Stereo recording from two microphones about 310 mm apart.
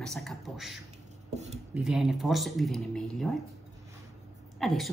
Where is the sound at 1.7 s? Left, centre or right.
Centre.